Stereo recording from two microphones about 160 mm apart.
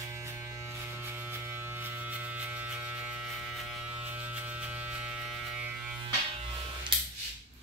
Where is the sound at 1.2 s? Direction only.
15° right (ahead or behind).